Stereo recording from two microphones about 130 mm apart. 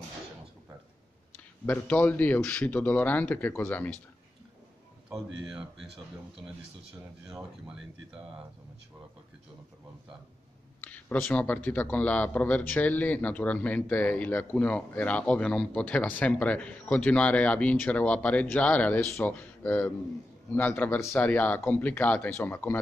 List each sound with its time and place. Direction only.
1.3 s a man's voice: 15° left (ahead or behind)
5.1 s a man's voice: 5° right (ahead or behind)
10.8 s a man's voice: 15° left (ahead or behind)